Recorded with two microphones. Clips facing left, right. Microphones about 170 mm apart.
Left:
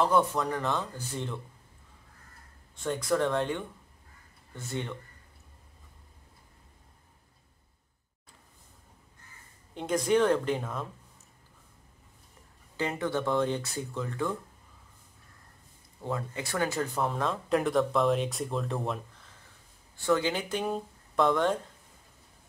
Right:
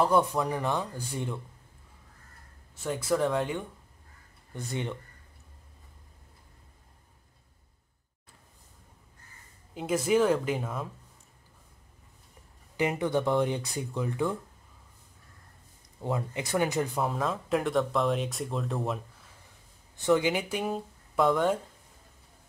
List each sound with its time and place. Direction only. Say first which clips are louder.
0.0 s speech: right 1 dB; 10° right (ahead or behind)
2.7 s speech: even; 5° right (ahead or behind)
4.6 s speech: right 2 dB; 15° right (ahead or behind)
9.8 s speech: even; 5° right (ahead or behind)
12.7 s speech: right 3 dB; 15° right (ahead or behind)
16.0 s speech: right 2 dB; 20° right (ahead or behind)
16.9 s speech: even; centre (ahead or behind)
20.0 s speech: right 2 dB; 15° right (ahead or behind)